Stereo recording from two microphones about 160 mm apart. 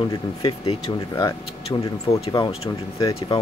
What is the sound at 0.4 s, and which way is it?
Speech, 30° left (ahead or behind).